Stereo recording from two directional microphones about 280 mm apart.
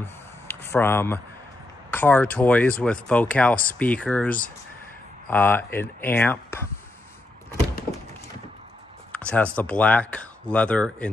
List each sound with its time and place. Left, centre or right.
0.0 s a sound: centre
1.9 s speech: centre
9.1 s speech: centre